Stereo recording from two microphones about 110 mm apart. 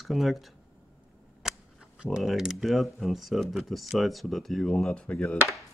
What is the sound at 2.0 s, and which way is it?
Speech, 5° right (ahead or behind).